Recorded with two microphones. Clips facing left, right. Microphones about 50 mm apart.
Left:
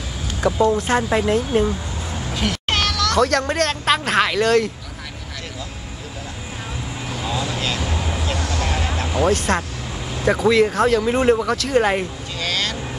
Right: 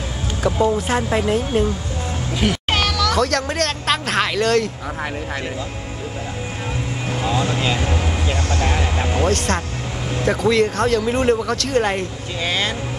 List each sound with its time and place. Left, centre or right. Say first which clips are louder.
0.5 s speech: left 1 dB; centre
7.5 s speech: right 3 dB; right
7.8 s speech: right 3 dB; right
9.2 s speech: left 3 dB; centre
12.4 s vehicle: right 2 dB; right